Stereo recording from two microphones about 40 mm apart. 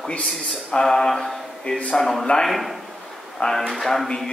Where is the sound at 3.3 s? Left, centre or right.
Centre.